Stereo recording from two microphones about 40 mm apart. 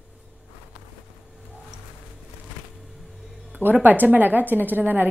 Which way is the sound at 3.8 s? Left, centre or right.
Right.